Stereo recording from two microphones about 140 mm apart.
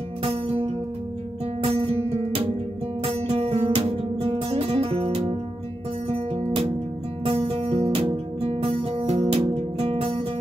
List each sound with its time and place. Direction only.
0.2 s music: 45° right (ahead or behind)